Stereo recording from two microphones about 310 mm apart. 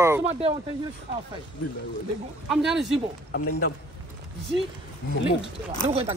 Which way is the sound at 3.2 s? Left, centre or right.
Left.